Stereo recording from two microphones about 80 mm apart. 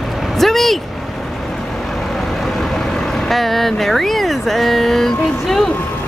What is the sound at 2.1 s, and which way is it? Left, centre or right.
Vehicle, centre.